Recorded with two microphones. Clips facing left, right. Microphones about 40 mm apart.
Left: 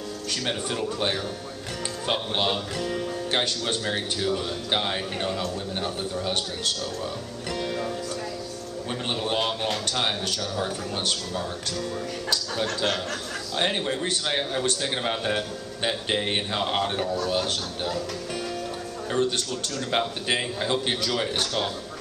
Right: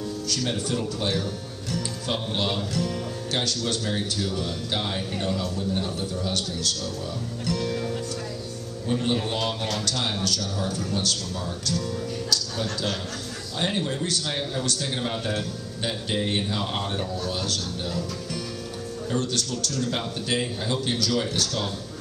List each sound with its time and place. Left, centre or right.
0.3 s speech: left
7.4 s music: left
8.8 s a man's voice: left
13.6 s speech: left
19.1 s speech: left